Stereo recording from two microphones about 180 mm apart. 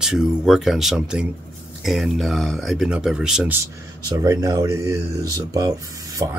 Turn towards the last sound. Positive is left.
turn(degrees=-25)  # may be behind; listen again after turning